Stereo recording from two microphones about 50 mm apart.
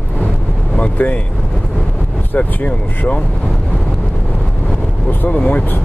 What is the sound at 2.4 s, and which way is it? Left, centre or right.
Speech, left.